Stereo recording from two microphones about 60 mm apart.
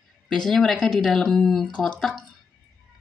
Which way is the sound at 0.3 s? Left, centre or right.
Centre.